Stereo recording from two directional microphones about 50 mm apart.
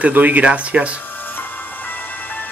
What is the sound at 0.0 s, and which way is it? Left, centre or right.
Speech, right.